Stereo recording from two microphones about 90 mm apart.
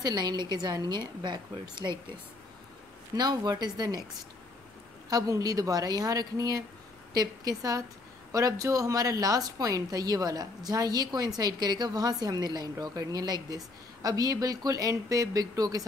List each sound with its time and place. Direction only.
0.0 s a woman's voice: 55° right (ahead or behind)
3.2 s a woman's voice: 50° right (ahead or behind)
5.1 s a woman's voice: 45° right (ahead or behind)